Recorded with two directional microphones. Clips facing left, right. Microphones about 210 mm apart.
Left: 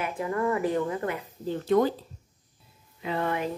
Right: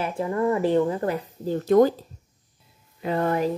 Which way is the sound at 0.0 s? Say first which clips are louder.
Right 4 dB; 30° right (ahead or behind).